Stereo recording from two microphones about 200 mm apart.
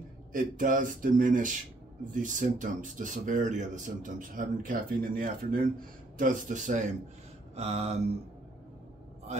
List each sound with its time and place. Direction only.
0.3 s speech: 40° right (ahead or behind)